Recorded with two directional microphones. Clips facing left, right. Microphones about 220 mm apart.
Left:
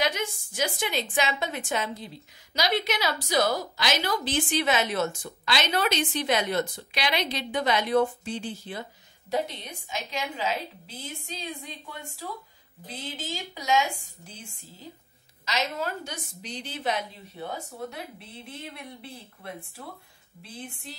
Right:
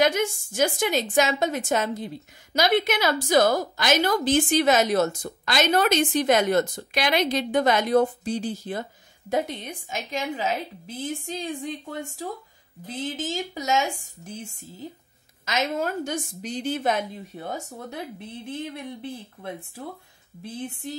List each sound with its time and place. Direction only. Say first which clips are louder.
0.0 s a woman's voice: right 7 dB; 50° right (ahead or behind)
15.4 s a woman's voice: right 4 dB; 50° right (ahead or behind)